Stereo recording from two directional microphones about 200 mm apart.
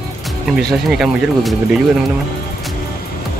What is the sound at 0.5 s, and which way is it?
Speech, centre (ahead or behind).